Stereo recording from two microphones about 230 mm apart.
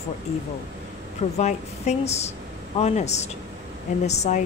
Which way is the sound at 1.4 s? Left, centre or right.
Left.